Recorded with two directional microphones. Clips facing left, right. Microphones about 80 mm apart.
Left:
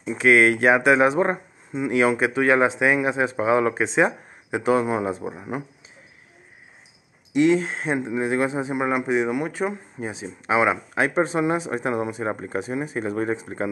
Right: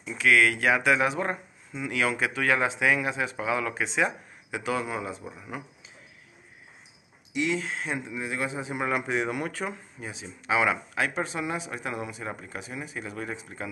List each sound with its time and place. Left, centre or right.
0.0 s speech: left
7.3 s speech: left; by 9.8 s centre
9.9 s speech: left